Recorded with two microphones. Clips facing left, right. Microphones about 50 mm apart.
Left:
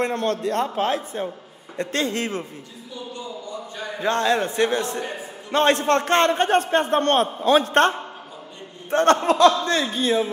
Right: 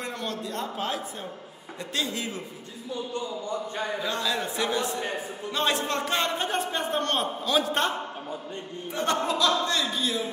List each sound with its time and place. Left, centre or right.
0.0 s a man's voice: left
4.0 s a man's voice: left
8.9 s a man's voice: left